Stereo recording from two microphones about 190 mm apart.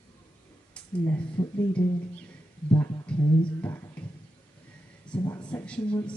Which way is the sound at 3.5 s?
10° left (ahead or behind).